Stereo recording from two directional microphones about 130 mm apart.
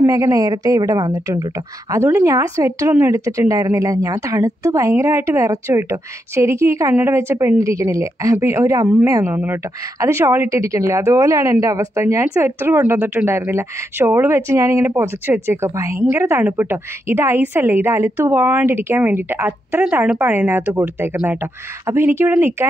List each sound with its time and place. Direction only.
0.0 s speech: 25° right (ahead or behind)